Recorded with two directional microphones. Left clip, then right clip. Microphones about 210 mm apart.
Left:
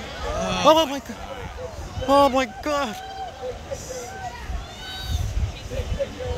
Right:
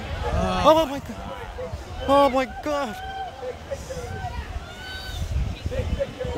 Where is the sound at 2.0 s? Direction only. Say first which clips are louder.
Left 1 dB; centre (ahead or behind).